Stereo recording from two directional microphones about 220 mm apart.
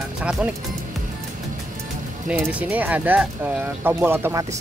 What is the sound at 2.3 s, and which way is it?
Speech, 5° right (ahead or behind).